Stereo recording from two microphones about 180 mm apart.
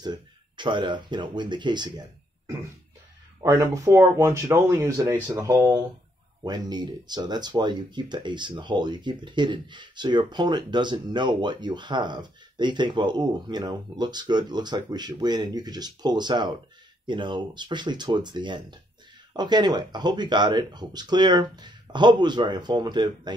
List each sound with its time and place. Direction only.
0.0 s speech: 25° right (ahead or behind)